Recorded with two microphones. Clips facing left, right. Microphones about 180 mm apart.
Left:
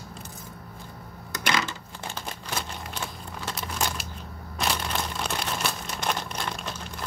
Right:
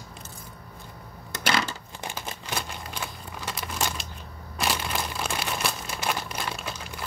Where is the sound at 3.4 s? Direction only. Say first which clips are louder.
Even; centre (ahead or behind).